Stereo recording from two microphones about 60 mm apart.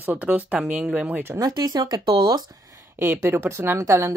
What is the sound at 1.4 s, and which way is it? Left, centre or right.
Speech, right.